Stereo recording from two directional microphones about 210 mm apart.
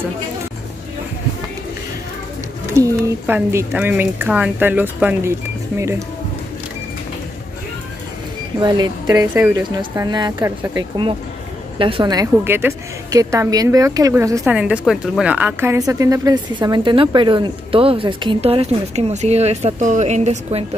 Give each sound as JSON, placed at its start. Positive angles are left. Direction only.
{"t": 2.7, "sound": "a woman's voice", "side_deg": -10}
{"t": 8.5, "sound": "a woman's voice", "side_deg": -20}